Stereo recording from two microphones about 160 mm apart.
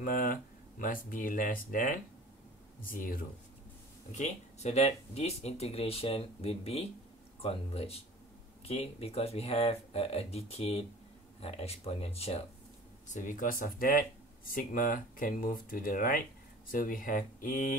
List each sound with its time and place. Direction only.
0.0 s speech: 60° left (ahead or behind)
4.1 s speech: 45° left (ahead or behind)
13.1 s speech: 55° left (ahead or behind)